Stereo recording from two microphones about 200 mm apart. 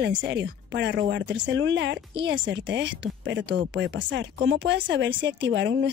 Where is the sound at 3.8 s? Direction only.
65° right (ahead or behind).